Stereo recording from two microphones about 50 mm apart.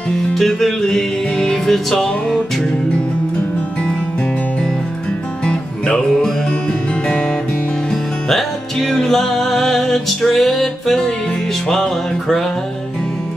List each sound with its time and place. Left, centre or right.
0.3 s music: centre
5.4 s music: centre
7.9 s music: centre